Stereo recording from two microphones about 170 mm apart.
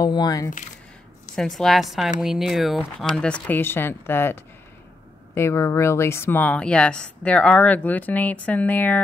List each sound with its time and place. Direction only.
0.0 s speech: 25° left (ahead or behind)
1.3 s a woman's voice: 5° left (ahead or behind)